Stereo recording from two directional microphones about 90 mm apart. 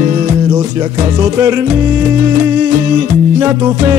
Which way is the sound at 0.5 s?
40° right (ahead or behind).